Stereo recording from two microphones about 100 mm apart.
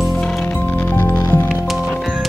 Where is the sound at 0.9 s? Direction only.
15° left (ahead or behind).